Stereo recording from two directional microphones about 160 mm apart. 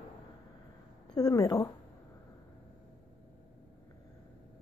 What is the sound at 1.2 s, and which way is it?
Speech, 25° left (ahead or behind).